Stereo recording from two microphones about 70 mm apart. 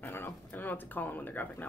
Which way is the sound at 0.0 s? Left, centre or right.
Left.